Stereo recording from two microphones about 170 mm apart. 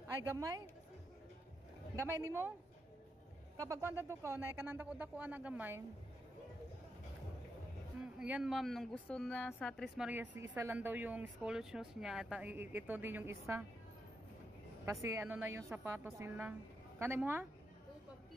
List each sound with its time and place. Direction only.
0.3 s speech: 20° right (ahead or behind)
2.0 s speech: 15° right (ahead or behind)
3.5 s speech: 20° right (ahead or behind)
8.0 s a woman's voice: 5° right (ahead or behind)
14.9 s speech: 15° right (ahead or behind)